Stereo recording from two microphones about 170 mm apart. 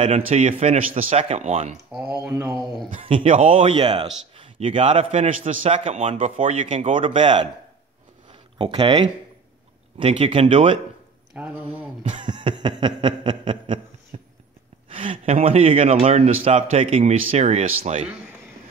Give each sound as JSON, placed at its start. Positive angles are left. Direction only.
{"t": 0.0, "sound": "a man's voice", "side_deg": -40}
{"t": 2.2, "sound": "speech", "side_deg": -10}
{"t": 3.0, "sound": "a man's voice", "side_deg": -35}
{"t": 3.7, "sound": "a man's voice", "side_deg": -30}
{"t": 8.3, "sound": "a sound", "side_deg": -30}
{"t": 9.9, "sound": "a man's voice", "side_deg": -30}
{"t": 11.3, "sound": "speech", "side_deg": -10}
{"t": 12.0, "sound": "snicker", "side_deg": -30}
{"t": 14.1, "sound": "a sound", "side_deg": -35}
{"t": 15.4, "sound": "a man's voice", "side_deg": -35}